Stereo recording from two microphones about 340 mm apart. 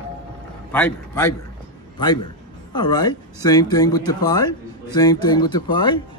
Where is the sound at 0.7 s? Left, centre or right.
Centre.